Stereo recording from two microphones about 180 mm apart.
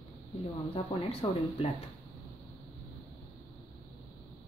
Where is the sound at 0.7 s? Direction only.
35° left (ahead or behind).